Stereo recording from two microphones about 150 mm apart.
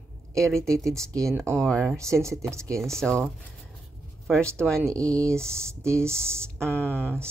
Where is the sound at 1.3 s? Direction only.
15° right (ahead or behind).